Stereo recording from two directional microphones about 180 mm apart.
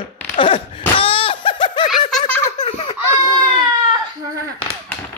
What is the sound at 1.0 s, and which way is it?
Laughter, 30° left (ahead or behind).